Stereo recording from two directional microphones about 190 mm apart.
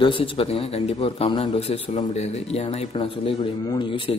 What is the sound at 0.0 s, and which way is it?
A man's voice, 25° left (ahead or behind).